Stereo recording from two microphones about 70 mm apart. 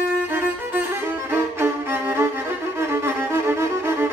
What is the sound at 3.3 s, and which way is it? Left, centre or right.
Music, right.